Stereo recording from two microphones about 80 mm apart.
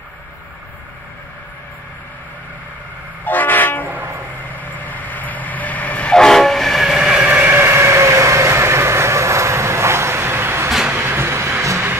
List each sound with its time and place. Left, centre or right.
3.3 s train: left; by 7.2 s centre
7.2 s train: right
10.9 s a sound: right